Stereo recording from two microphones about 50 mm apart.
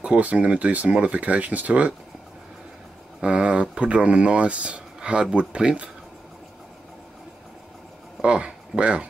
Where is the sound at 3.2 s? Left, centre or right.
Right.